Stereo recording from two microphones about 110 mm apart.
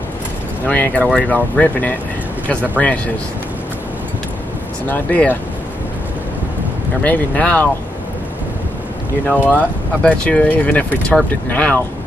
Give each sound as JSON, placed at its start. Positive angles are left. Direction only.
{"t": 0.7, "sound": "speech", "side_deg": 15}
{"t": 4.8, "sound": "speech", "side_deg": 15}
{"t": 7.0, "sound": "speech", "side_deg": 15}
{"t": 9.3, "sound": "speech", "side_deg": 10}